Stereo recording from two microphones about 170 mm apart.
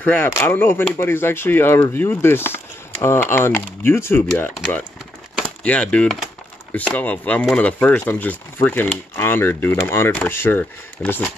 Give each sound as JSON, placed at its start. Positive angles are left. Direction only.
{"t": 0.0, "sound": "speech", "side_deg": 10}